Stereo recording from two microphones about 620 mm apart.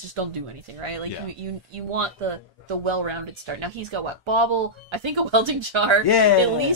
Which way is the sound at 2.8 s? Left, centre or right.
Right.